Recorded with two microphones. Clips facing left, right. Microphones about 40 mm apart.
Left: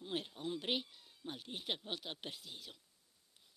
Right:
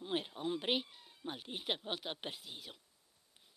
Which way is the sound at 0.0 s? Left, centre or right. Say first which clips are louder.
Right 4 dB; centre.